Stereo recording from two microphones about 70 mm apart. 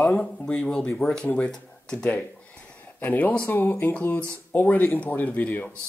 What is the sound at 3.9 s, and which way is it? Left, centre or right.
Speech, left.